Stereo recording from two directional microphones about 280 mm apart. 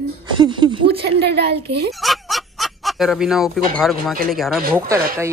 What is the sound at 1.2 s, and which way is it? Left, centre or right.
Speech, right.